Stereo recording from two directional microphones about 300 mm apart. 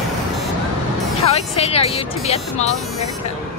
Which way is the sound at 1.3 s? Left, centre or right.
Centre.